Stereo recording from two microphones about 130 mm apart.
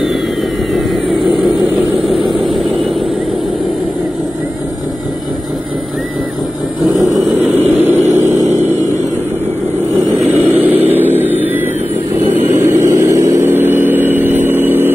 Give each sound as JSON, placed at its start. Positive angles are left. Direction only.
{"t": 2.2, "sound": "vehicle", "side_deg": 0}
{"t": 7.0, "sound": "vehicle", "side_deg": 0}
{"t": 7.7, "sound": "vehicle", "side_deg": -15}
{"t": 8.0, "sound": "vehicle", "side_deg": -60}
{"t": 10.3, "sound": "vehicle", "side_deg": -15}